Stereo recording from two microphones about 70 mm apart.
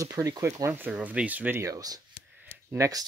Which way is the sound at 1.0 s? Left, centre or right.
Right.